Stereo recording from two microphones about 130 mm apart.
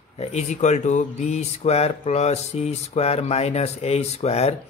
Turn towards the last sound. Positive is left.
turn(degrees=55)  # may be behind; listen again after turning